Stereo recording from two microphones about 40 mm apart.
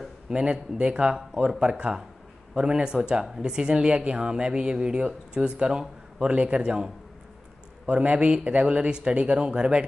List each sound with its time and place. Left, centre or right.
0.3 s a woman's voice: right
1.5 s a woman's voice: centre
7.8 s a man's voice: right